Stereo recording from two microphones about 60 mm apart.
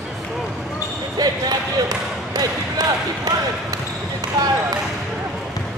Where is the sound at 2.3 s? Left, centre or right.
Right.